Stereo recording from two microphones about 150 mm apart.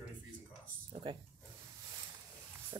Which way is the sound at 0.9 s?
35° right (ahead or behind).